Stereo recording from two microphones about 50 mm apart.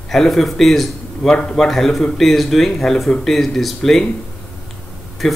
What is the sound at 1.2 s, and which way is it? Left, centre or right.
Speech, centre.